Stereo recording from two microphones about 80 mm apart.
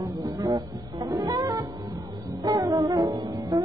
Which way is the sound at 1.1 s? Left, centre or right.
Right.